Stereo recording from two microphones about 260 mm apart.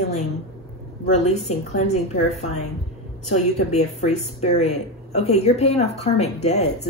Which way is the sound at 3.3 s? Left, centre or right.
Left.